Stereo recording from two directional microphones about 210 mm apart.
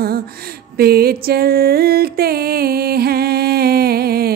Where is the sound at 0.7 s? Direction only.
45° right (ahead or behind).